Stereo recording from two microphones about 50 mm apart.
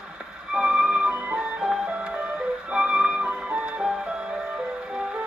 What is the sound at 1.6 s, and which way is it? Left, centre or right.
Music, centre.